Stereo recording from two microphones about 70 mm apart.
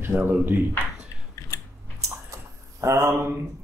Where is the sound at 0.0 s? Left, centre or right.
Right.